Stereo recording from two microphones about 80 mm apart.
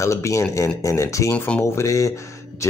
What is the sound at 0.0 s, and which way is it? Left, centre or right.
Speech, left.